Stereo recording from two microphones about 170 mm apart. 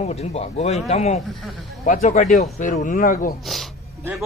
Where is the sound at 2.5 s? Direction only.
55° left (ahead or behind).